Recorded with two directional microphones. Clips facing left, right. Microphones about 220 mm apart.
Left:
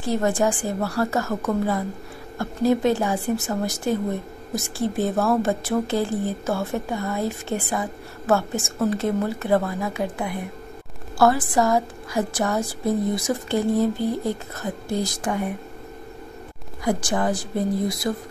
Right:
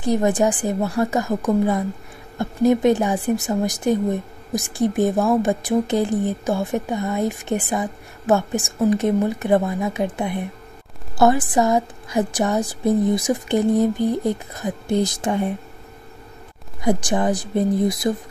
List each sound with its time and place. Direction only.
0.0 s a woman's voice: 15° right (ahead or behind)
16.8 s a woman's voice: 20° right (ahead or behind)